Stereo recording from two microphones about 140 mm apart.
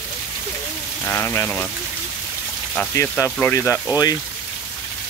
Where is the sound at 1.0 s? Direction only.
15° left (ahead or behind).